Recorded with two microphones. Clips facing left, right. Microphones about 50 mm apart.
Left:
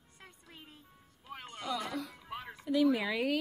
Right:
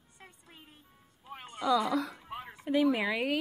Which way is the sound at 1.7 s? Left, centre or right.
Right.